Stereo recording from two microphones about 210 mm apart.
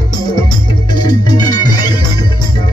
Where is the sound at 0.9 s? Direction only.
20° left (ahead or behind).